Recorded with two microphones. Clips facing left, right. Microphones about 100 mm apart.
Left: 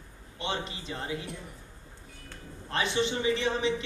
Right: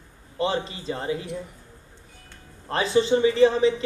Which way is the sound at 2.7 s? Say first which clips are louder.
Right 8 dB; 35° right (ahead or behind).